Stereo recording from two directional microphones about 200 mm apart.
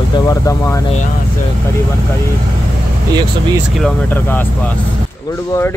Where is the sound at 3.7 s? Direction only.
5° left (ahead or behind).